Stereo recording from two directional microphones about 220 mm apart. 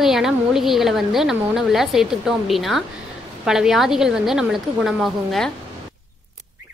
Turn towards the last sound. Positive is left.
turn(degrees=0)  # may be behind; listen again after turning